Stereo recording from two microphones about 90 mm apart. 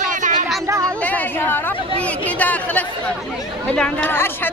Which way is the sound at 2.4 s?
15° left (ahead or behind).